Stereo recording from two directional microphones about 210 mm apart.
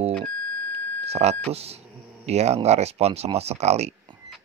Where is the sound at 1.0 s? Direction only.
30° right (ahead or behind).